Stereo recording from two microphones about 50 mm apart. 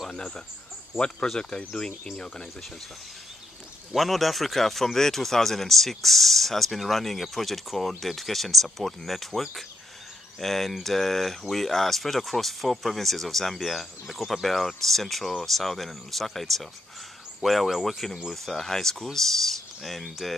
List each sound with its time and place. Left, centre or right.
0.9 s speech: centre
3.9 s speech: centre